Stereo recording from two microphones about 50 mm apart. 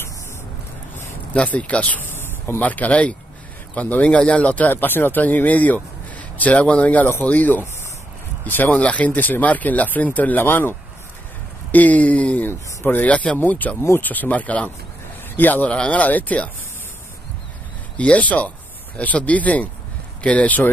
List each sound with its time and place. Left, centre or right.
1.3 s speech: left
8.8 s speech: left
10.4 s speech: left
11.7 s speech: left
12.4 s speech: left
13.0 s speech: left
15.7 s speech: left
17.9 s speech: left